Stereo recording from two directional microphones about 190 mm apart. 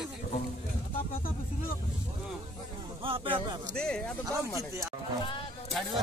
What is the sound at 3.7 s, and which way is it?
Speech, 5° left (ahead or behind).